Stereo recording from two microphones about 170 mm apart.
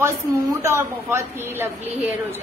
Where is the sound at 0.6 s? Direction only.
15° right (ahead or behind).